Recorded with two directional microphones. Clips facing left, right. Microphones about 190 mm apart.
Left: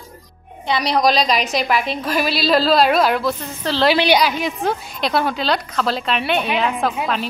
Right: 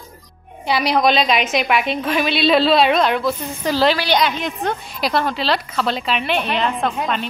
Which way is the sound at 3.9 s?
20° left (ahead or behind).